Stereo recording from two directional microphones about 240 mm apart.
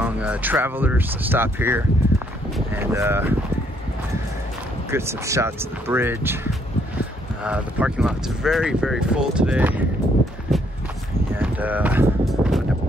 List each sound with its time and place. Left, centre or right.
0.0 s speech: centre
4.9 s speech: centre
11.3 s a sound: centre